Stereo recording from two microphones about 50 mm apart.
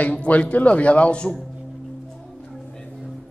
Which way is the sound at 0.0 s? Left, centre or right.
Left.